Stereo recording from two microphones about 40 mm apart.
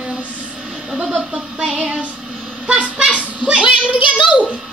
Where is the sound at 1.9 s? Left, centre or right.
Right.